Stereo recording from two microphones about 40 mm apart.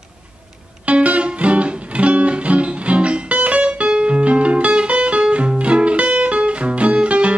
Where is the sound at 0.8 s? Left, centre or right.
Right.